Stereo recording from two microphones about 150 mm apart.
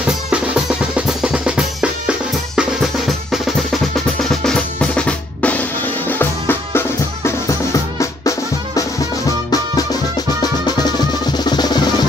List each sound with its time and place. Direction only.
0.0 s drum: 10° right (ahead or behind); by 6.8 s 15° left (ahead or behind)
8.0 s music: 20° left (ahead or behind)
11.3 s music: 30° left (ahead or behind)